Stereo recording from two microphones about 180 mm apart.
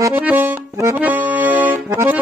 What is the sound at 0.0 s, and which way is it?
Accordion, 10° right (ahead or behind).